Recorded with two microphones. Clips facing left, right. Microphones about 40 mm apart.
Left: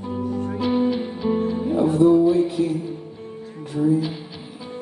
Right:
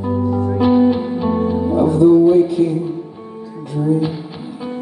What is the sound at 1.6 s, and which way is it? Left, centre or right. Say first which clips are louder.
Music: right 5 dB; right.